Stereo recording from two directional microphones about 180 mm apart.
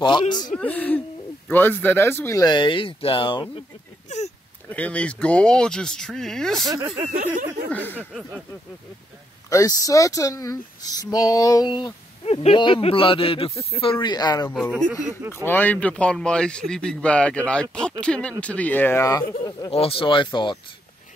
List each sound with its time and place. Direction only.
0.0 s speech: 25° left (ahead or behind)
0.6 s speech: 10° left (ahead or behind); by 3.6 s 30° left (ahead or behind)
4.6 s a man's voice: 5° left (ahead or behind)
7.1 s speech: 45° right (ahead or behind)
7.7 s speech: 10° left (ahead or behind)
8.0 s a man's voice: 5° right (ahead or behind)
9.5 s speech: 20° left (ahead or behind)
14.5 s a man's voice: centre (ahead or behind)
15.3 s a man's voice: 10° left (ahead or behind)
19.7 s speech: 30° left (ahead or behind)